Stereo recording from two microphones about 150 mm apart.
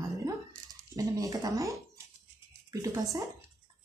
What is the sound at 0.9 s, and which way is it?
Speech, 25° right (ahead or behind).